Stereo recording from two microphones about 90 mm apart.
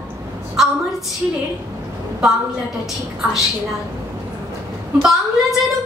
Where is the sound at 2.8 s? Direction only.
Centre (ahead or behind).